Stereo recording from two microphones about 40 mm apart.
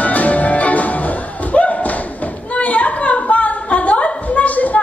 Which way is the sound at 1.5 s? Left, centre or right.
Left.